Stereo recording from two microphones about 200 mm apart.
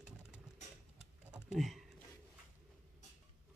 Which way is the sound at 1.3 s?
5° right (ahead or behind).